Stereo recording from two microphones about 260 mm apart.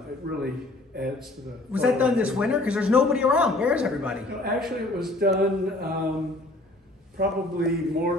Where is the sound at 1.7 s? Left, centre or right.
Centre.